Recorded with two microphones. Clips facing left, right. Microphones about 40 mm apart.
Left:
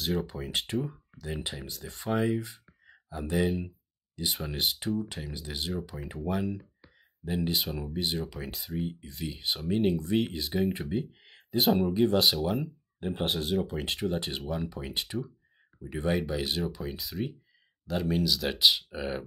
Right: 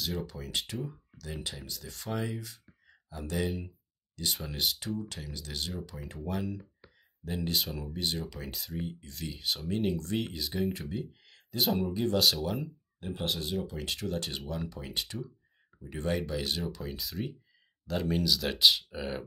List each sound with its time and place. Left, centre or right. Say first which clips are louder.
0.0 s speech: left 5 dB; centre
0.3 s speech: left 4 dB; left
0.6 s speech: left 4 dB; centre
10.7 s speech: left 4 dB; left
13.0 s speech: left 4 dB; left; by 19.2 s centre